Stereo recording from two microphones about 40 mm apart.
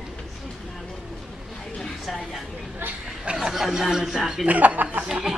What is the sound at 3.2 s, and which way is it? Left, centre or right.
Chatter, right.